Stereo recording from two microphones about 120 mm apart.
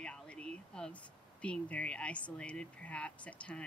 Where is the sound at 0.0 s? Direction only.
10° left (ahead or behind).